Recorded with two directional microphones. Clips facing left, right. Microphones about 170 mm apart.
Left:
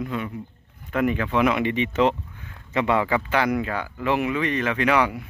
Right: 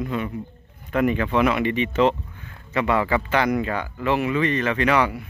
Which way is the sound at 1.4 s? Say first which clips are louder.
Left 1 dB; 15° left (ahead or behind).